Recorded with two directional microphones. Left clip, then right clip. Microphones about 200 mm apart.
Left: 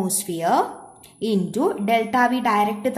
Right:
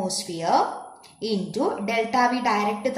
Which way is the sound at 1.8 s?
45° left (ahead or behind).